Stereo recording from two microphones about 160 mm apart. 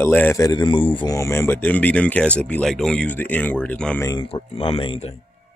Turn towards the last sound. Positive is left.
turn(degrees=35)  # may be behind; listen again after turning